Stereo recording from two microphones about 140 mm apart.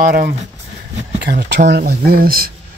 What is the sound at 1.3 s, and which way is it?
Speech, 75° right (ahead or behind).